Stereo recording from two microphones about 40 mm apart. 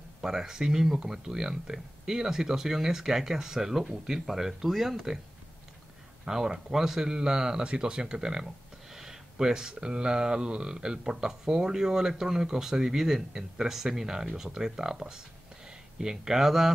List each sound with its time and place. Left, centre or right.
0.2 s speech: centre
6.2 s speech: centre